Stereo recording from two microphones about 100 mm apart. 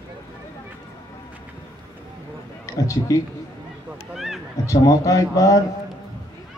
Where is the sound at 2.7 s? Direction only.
35° left (ahead or behind).